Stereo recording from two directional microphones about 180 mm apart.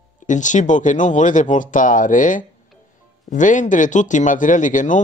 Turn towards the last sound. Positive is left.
turn(degrees=45)  # may be behind; listen again after turning